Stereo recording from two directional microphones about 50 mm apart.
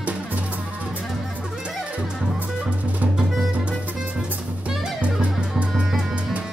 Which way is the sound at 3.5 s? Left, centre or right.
Right.